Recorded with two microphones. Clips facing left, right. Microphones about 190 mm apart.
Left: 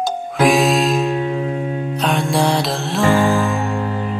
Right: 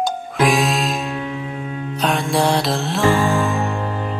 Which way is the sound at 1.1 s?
40° left (ahead or behind).